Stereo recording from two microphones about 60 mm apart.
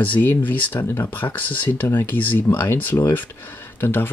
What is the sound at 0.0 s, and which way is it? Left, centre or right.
Speech, left.